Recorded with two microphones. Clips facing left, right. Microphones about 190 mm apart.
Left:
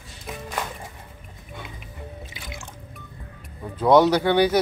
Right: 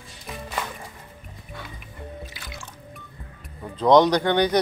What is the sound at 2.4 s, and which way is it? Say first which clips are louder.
Music: left 2 dB; 20° left (ahead or behind).